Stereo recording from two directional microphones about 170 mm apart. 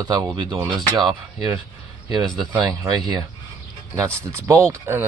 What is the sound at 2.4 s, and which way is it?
Speech, centre (ahead or behind).